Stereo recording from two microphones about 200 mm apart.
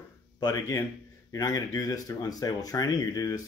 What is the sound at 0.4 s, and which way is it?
Speech, 15° left (ahead or behind).